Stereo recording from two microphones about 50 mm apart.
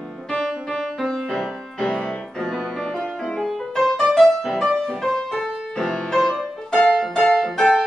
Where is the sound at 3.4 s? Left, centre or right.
Centre.